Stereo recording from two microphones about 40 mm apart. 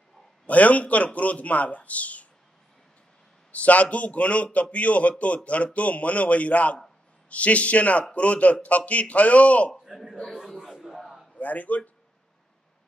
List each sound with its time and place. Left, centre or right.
0.5 s speech: left
3.5 s speech: left
10.3 s a sound: centre
11.3 s a man's voice: left